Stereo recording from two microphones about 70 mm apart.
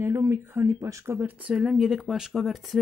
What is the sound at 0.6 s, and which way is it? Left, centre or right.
Speech, right.